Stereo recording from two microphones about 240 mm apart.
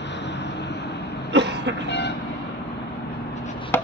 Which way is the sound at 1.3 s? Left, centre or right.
Right.